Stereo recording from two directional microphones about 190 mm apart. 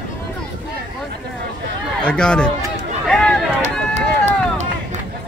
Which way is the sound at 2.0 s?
5° left (ahead or behind).